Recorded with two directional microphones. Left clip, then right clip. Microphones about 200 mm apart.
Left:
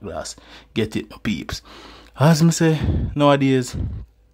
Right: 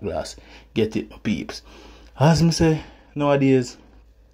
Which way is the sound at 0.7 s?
15° left (ahead or behind).